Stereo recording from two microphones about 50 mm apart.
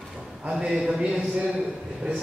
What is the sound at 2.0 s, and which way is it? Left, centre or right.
Speech, right.